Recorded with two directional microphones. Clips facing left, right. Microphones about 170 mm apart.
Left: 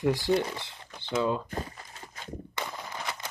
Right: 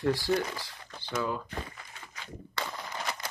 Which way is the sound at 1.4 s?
40° left (ahead or behind).